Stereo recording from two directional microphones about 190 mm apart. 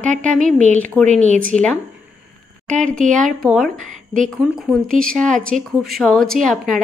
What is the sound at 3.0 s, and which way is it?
Speech, 45° right (ahead or behind).